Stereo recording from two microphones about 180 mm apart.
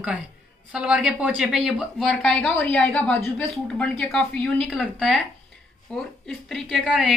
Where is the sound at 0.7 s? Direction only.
5° right (ahead or behind).